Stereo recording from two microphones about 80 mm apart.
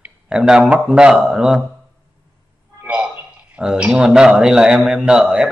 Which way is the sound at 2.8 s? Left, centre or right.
Centre.